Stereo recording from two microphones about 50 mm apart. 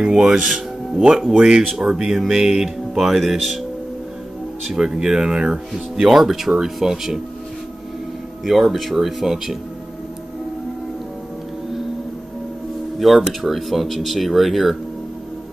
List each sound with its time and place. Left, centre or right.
0.0 s speech: centre
1.3 s speech: centre
4.7 s speech: centre
8.5 s speech: centre
13.0 s speech: centre